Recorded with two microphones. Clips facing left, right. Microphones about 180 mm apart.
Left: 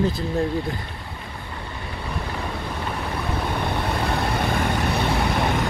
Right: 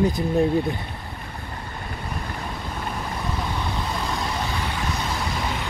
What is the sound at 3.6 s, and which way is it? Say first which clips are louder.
Vehicle: left 3 dB; 60° left (ahead or behind).